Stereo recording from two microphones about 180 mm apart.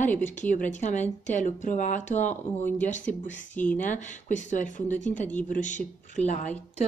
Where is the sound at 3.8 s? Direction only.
40° left (ahead or behind).